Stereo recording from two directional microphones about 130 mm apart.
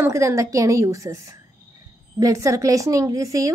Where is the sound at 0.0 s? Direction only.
25° right (ahead or behind).